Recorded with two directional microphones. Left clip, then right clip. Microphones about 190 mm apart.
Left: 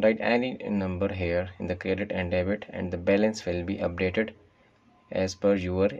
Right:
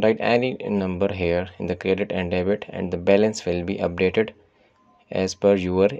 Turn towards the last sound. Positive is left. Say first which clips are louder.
# right 6 dB
turn(degrees=-40)  # may be behind; listen again after turning